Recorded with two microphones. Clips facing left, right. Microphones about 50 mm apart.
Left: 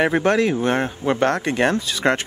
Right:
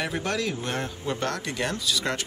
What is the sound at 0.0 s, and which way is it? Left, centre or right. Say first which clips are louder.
Speech: left 11 dB; left.